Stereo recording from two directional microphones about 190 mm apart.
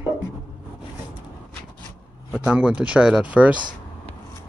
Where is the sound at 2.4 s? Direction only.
5° right (ahead or behind).